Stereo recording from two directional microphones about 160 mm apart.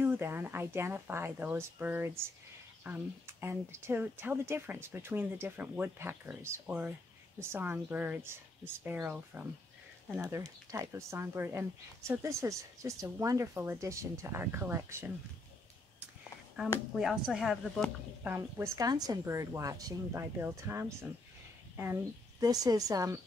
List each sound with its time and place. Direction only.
0.0 s speech: 10° right (ahead or behind)
10.2 s speech: 20° right (ahead or behind)
16.9 s a woman's voice: 5° right (ahead or behind)
18.2 s a woman's voice: 15° right (ahead or behind)
22.4 s a woman's voice: 25° right (ahead or behind)